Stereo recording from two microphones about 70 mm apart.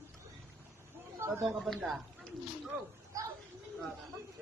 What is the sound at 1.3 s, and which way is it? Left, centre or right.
Speech, right.